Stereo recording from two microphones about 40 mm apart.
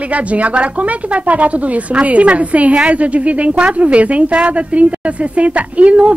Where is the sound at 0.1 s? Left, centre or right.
Right.